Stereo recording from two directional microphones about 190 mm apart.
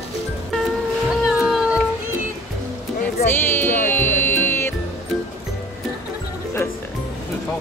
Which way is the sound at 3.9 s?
10° left (ahead or behind).